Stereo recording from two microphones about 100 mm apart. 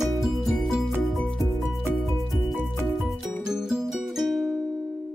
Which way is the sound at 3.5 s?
5° right (ahead or behind).